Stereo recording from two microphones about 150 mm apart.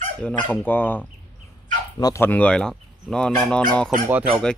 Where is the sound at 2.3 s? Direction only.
10° left (ahead or behind).